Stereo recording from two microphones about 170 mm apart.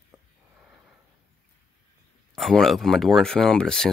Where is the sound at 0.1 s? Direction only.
5° right (ahead or behind).